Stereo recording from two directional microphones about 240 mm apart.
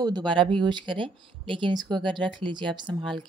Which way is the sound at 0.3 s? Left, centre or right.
Right.